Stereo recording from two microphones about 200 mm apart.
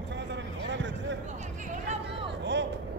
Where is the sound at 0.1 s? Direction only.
60° right (ahead or behind).